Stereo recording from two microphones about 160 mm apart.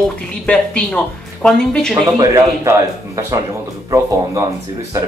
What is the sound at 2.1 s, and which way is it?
A man's voice, 15° right (ahead or behind).